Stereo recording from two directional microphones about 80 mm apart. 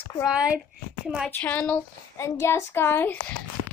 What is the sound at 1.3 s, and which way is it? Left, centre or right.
Speech, centre.